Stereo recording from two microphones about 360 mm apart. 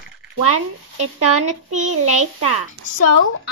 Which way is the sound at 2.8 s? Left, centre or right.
Right.